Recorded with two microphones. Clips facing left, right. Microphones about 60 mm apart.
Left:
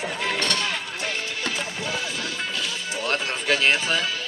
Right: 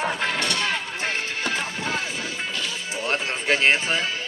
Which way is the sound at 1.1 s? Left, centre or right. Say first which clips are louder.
Right 3 dB; right.